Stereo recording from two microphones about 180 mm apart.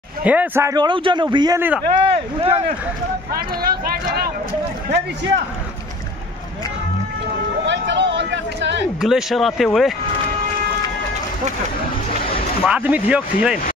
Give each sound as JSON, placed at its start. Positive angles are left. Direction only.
{"t": 0.2, "sound": "a man's voice", "side_deg": -10}
{"t": 3.3, "sound": "speech", "side_deg": -55}
{"t": 7.6, "sound": "speech", "side_deg": -80}
{"t": 9.0, "sound": "speech", "side_deg": 0}
{"t": 12.6, "sound": "speech", "side_deg": -10}